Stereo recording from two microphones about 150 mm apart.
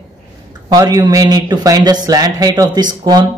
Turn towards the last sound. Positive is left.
turn(degrees=-25)  # may be behind; listen again after turning